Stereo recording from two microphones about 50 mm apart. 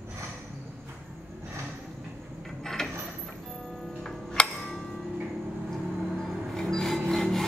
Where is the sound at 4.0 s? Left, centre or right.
Centre.